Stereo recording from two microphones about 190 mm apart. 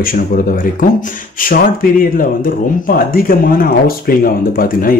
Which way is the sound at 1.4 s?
50° left (ahead or behind).